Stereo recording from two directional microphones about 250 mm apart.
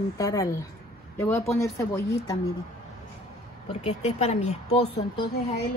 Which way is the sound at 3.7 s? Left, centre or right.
Left.